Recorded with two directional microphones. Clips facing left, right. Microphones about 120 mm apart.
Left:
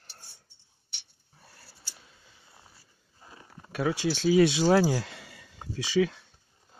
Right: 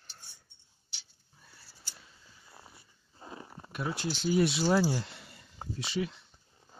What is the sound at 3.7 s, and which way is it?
Speech, 90° left.